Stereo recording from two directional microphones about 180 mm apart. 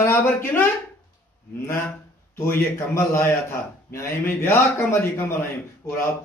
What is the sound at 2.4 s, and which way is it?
A man's voice, 15° left (ahead or behind).